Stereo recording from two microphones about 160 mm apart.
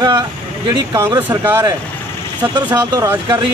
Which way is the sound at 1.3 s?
20° right (ahead or behind).